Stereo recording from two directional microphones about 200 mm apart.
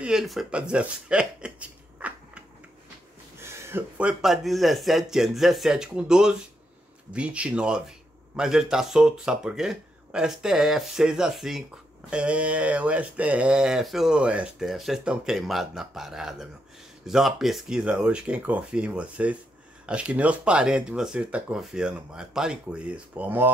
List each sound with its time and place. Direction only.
0.0 s speech: centre (ahead or behind)